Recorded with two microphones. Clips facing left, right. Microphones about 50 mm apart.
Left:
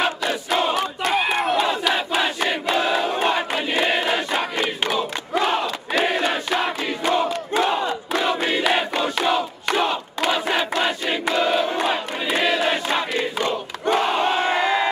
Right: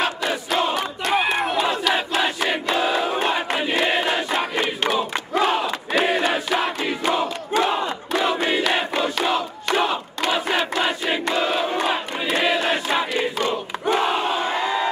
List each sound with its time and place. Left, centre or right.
0.0 s crowd: centre
14.3 s crowd: left
14.6 s crowd: centre